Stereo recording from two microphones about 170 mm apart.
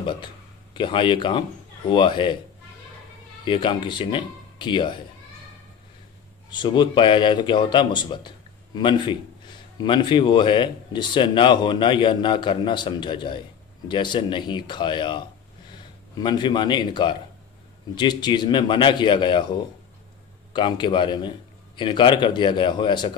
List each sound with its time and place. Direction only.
0.7 s speech: 30° left (ahead or behind)
3.4 s speech: 30° left (ahead or behind)
6.5 s speech: 25° left (ahead or behind)
20.5 s speech: 25° left (ahead or behind)